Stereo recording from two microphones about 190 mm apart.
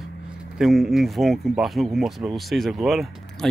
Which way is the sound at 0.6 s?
Centre (ahead or behind).